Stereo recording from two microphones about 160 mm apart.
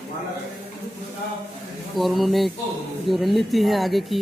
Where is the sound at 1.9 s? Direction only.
Centre (ahead or behind).